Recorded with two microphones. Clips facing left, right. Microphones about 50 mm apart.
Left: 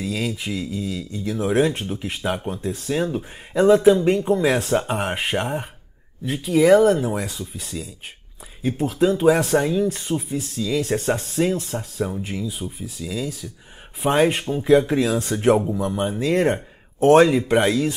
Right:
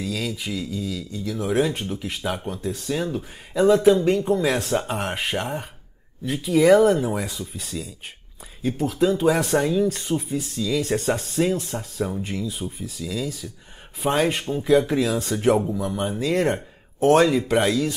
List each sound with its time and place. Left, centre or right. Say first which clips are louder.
0.0 s speech: left 2 dB; left
1.5 s speech: left 2 dB; centre
6.2 s speech: left 1 dB; centre
14.1 s speech: left 4 dB; centre
15.2 s speech: left 2 dB; left
15.9 s speech: left 3 dB; centre